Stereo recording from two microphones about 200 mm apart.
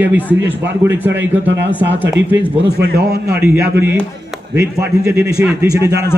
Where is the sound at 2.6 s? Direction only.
55° right (ahead or behind).